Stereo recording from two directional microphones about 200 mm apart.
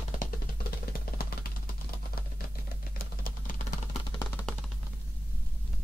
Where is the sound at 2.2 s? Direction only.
50° left (ahead or behind).